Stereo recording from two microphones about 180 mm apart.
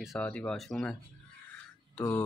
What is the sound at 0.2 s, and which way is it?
Speech, 5° left (ahead or behind).